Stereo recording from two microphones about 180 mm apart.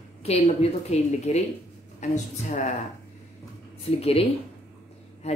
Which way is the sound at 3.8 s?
35° left (ahead or behind).